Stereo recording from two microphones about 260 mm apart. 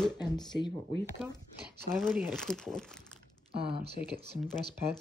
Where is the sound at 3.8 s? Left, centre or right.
Right.